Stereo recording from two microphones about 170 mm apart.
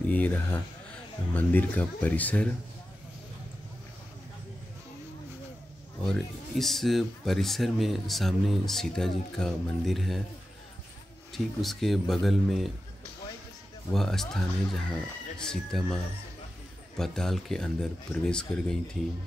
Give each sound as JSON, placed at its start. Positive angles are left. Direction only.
{"t": 0.0, "sound": "speech", "side_deg": 10}
{"t": 6.1, "sound": "speech", "side_deg": 0}
{"t": 11.3, "sound": "speech", "side_deg": 0}
{"t": 13.9, "sound": "speech", "side_deg": 0}